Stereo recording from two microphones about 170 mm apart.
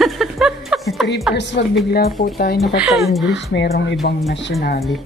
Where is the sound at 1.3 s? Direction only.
90° left; by 2.5 s 65° left (ahead or behind).